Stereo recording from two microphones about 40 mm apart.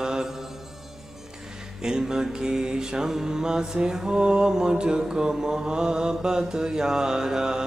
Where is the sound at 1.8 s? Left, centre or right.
Centre.